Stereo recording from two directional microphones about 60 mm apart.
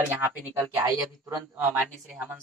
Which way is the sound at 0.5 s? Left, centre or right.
Right.